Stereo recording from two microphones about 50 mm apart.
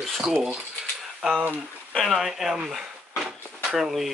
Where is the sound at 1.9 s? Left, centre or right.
Centre.